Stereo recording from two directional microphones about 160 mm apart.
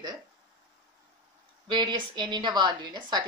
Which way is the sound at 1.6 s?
30° right (ahead or behind).